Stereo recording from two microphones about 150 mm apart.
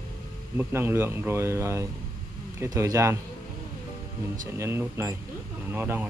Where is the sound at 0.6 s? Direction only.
15° right (ahead or behind).